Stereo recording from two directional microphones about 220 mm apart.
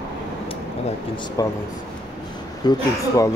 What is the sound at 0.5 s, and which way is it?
Speech, 25° left (ahead or behind).